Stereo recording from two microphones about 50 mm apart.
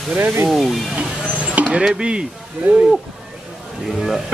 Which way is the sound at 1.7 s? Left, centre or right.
Centre.